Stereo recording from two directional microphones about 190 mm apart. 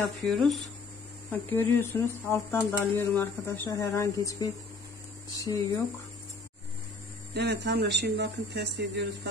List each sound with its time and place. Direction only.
0.3 s speech: centre (ahead or behind); by 5.8 s 15° left (ahead or behind)
7.3 s speech: 60° right (ahead or behind)